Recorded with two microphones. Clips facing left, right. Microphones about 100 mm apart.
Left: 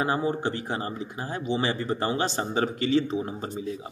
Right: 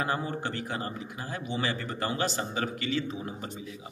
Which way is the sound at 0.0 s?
25° left (ahead or behind).